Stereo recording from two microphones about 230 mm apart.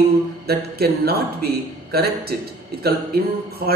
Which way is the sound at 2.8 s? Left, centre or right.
Right.